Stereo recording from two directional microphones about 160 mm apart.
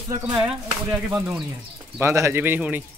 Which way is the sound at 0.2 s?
10° right (ahead or behind).